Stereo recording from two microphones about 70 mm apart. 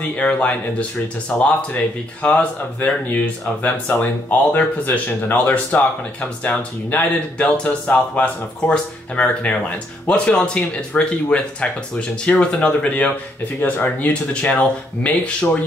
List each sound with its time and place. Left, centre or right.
0.1 s speech: centre